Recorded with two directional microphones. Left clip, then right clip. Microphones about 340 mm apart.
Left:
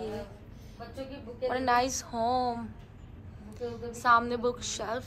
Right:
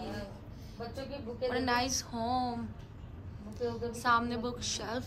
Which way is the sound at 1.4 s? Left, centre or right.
Centre.